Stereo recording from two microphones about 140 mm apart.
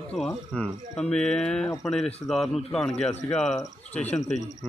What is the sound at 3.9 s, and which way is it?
Speech, 55° left (ahead or behind).